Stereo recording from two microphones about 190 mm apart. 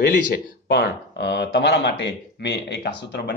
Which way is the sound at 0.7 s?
65° left (ahead or behind).